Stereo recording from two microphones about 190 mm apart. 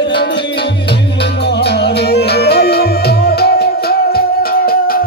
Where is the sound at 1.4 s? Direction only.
60° left (ahead or behind).